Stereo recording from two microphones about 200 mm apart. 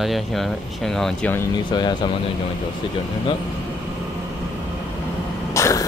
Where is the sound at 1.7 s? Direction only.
20° left (ahead or behind).